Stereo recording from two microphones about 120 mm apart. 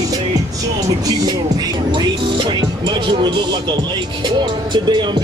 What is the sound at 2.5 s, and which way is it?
Music, 40° right (ahead or behind).